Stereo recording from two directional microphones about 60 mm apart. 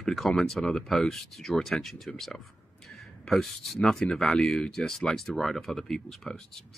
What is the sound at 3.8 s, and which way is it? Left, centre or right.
Speech, centre.